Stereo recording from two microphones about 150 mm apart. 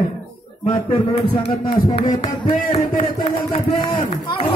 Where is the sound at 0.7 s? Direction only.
35° left (ahead or behind).